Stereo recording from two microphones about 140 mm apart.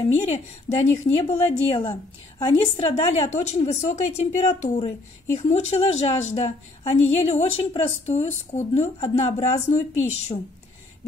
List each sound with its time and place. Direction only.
0.0 s a woman's voice: 45° left (ahead or behind)
4.7 s a woman's voice: 45° left (ahead or behind)
9.7 s speech: 55° left (ahead or behind)